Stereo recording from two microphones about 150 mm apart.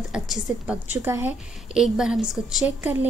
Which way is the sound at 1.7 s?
5° right (ahead or behind).